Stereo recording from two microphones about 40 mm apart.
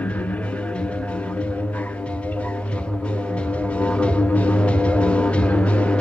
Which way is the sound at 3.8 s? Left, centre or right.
Left.